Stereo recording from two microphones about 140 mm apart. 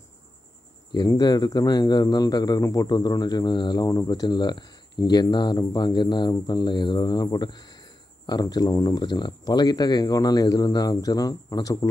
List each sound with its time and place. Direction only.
0.9 s speech: 25° left (ahead or behind)